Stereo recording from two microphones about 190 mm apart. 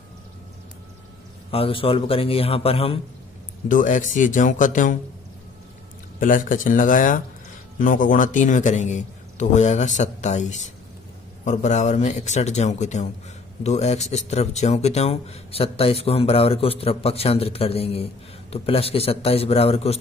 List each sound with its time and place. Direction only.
1.5 s a man's voice: 30° left (ahead or behind)
3.6 s speech: 45° left (ahead or behind)
6.1 s a man's voice: 45° left (ahead or behind)